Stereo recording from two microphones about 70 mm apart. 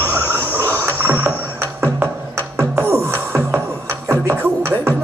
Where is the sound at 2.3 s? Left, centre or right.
Right.